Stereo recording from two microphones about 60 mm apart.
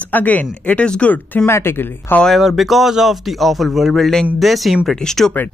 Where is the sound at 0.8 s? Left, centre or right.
Centre.